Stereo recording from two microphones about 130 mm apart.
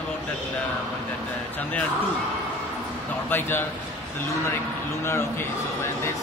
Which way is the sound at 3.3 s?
15° left (ahead or behind).